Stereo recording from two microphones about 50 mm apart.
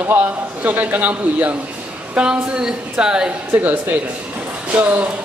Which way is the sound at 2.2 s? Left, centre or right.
Centre.